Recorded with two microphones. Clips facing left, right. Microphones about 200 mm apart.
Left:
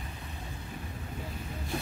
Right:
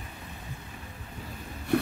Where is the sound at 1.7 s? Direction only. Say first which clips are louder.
Right 11 dB; 65° right (ahead or behind).